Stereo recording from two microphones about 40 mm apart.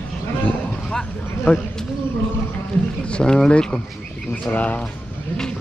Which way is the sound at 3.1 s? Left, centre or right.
Left.